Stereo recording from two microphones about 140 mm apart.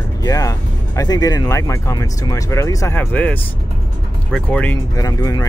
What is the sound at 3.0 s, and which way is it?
Speech, 10° left (ahead or behind).